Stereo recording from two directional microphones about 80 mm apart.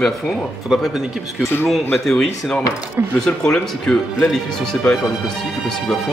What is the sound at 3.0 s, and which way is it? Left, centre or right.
Speech, right.